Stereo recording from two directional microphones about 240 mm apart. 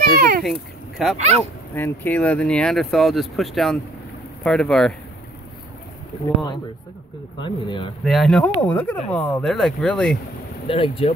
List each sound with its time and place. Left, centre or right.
0.0 s a child's voice: right
0.4 s speech: centre
1.1 s speech: right
1.8 s speech: centre
7.3 s speech: centre
8.0 s speech: centre
10.7 s speech: left